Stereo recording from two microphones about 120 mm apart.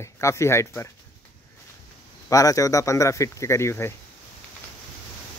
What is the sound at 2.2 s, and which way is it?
Speech, 30° left (ahead or behind).